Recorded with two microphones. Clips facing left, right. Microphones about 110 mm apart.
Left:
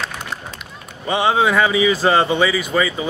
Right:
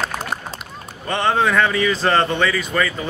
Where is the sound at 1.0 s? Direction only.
10° left (ahead or behind).